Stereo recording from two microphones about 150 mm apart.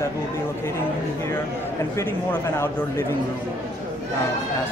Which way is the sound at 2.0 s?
15° left (ahead or behind).